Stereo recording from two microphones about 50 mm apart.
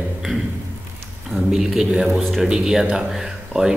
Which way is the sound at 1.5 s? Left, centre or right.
Centre.